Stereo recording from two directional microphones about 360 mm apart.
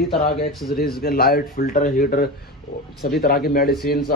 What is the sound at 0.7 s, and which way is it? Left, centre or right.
Speech, left.